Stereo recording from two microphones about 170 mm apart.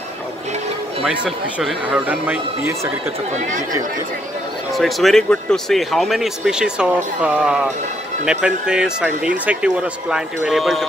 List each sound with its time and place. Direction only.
1.0 s speech: 5° right (ahead or behind)
3.3 s speech: 50° right (ahead or behind)
4.7 s speech: centre (ahead or behind)